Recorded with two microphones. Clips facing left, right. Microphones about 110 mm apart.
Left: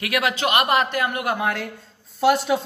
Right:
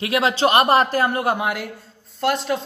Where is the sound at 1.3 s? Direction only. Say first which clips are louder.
Right 1 dB; 15° right (ahead or behind).